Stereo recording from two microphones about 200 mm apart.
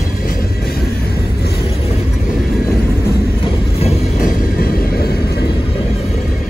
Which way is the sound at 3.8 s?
45° left (ahead or behind).